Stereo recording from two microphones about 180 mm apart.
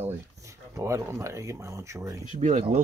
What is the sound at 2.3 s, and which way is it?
Speech, 45° right (ahead or behind).